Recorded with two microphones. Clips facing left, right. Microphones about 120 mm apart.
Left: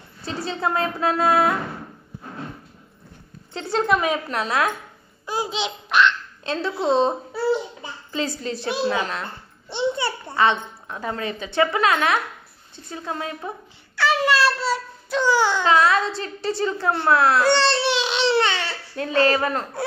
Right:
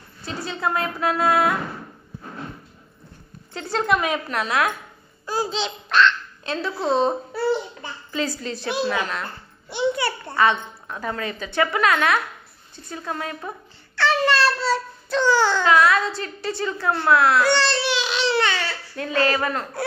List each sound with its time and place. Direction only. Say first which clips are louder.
0.2 s a child's voice: left 1 dB; 30° left (ahead or behind)
3.5 s a child's voice: left 1 dB; 25° left (ahead or behind)
5.2 s speech: right 1 dB; 15° left (ahead or behind)
6.4 s a child's voice: left 2 dB; 30° left (ahead or behind)
13.9 s a child's voice: even; 5° left (ahead or behind)
15.6 s a woman's voice: even; 25° left (ahead or behind)